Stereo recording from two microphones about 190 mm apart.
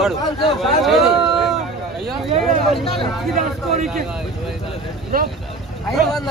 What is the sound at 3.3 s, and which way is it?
Speech, 40° right (ahead or behind).